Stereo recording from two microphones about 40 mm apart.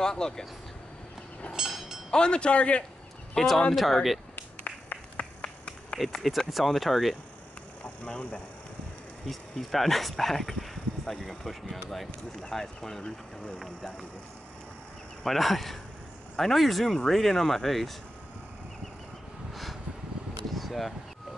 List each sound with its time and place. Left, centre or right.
0.0 s speech: centre
1.5 s a sound: centre
2.0 s a man's voice: left
3.3 s speech: centre
4.4 s a sound: left
5.4 s run: left
6.1 s speech: centre
7.8 s speech: left
9.2 s speech: centre
15.2 s speech: centre
19.5 s a sound: centre